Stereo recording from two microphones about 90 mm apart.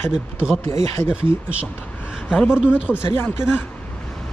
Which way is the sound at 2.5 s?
10° right (ahead or behind).